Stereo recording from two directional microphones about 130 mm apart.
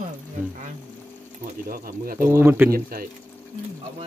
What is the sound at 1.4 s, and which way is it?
Speech, 90° right.